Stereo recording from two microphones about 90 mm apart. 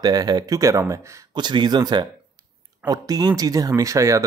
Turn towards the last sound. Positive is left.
turn(degrees=-35)  # may be behind; listen again after turning